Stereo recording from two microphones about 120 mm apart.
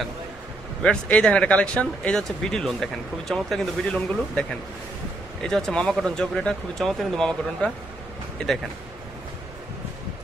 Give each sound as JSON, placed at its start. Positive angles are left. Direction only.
{"t": 0.8, "sound": "speech", "side_deg": 10}